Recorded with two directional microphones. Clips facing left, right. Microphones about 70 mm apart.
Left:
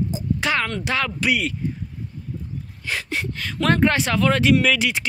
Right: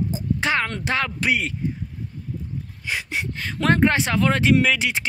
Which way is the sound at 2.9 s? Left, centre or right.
Centre.